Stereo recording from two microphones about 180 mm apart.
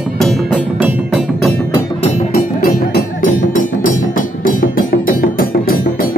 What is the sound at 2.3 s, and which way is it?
Music, 55° left (ahead or behind).